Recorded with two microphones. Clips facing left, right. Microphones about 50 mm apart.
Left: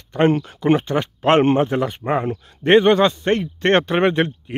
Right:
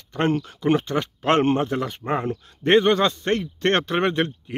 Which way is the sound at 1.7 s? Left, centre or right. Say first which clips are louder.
Left 4 dB; centre.